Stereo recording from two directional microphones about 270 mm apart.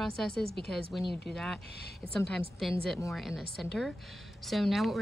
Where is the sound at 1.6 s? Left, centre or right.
Left.